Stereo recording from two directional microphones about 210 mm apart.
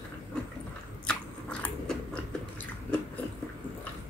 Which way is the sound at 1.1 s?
5° left (ahead or behind).